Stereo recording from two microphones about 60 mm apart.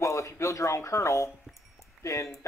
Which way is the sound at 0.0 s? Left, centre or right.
Left.